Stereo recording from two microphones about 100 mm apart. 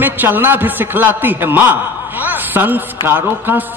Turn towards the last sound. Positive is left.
turn(degrees=-20)  # may be behind; listen again after turning